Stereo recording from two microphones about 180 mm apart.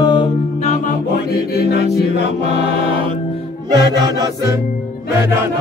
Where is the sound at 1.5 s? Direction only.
65° left (ahead or behind).